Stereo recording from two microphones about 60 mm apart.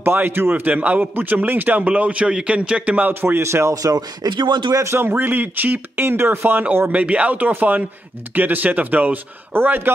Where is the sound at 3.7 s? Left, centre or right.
Right.